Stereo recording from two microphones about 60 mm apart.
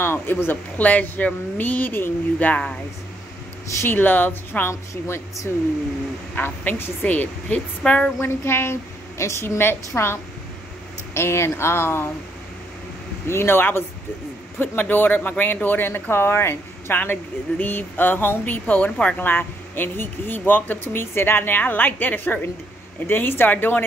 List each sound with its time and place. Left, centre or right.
0.0 s speech: left
2.3 s a woman's voice: left
3.8 s speech: left
6.3 s a woman's voice: left
8.2 s a woman's voice: left
9.2 s a woman's voice: left
13.3 s speech: left